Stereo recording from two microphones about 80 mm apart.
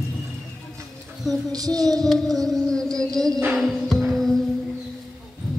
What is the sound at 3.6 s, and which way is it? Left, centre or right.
Music, centre.